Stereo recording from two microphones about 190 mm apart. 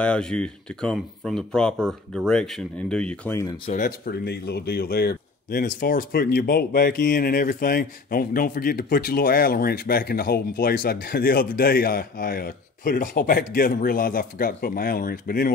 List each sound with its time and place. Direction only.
0.0 s speech: 5° left (ahead or behind)
3.7 s speech: 45° left (ahead or behind)